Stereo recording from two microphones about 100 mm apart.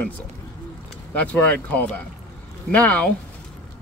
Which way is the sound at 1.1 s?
15° left (ahead or behind).